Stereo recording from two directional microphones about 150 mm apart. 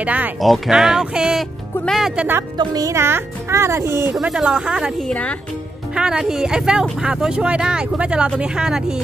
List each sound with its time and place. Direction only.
0.0 s speech: 10° right (ahead or behind)
2.5 s speech: 25° right (ahead or behind)
4.1 s speech: 5° right (ahead or behind)
5.0 s speech: 10° left (ahead or behind)
5.9 s speech: 5° right (ahead or behind)